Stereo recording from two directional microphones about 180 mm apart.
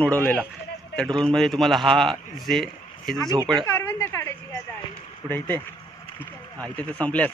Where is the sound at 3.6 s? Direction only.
15° left (ahead or behind).